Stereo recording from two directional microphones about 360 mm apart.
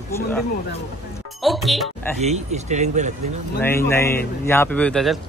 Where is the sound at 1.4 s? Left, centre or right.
Centre.